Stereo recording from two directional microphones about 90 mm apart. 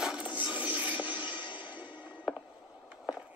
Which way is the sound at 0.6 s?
15° right (ahead or behind).